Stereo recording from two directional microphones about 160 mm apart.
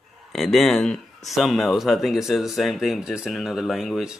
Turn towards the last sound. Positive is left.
turn(degrees=0)  # may be behind; listen again after turning